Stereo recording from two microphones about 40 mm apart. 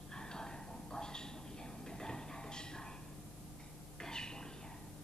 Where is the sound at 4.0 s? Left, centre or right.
Centre.